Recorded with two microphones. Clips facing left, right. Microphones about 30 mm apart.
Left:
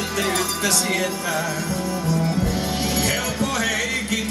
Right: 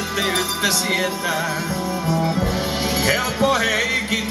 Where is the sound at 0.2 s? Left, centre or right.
Centre.